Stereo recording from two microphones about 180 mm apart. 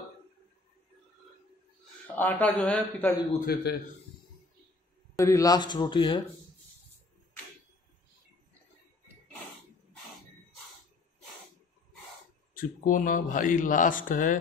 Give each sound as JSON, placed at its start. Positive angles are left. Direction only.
{"t": 2.0, "sound": "a man's voice", "side_deg": 10}
{"t": 3.3, "sound": "a man's voice", "side_deg": 55}
{"t": 5.1, "sound": "speech", "side_deg": 15}
{"t": 12.5, "sound": "speech", "side_deg": 50}